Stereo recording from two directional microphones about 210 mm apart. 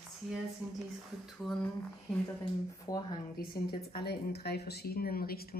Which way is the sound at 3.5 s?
45° left (ahead or behind).